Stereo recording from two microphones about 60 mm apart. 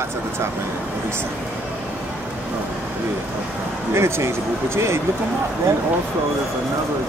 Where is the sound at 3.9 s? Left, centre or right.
Right.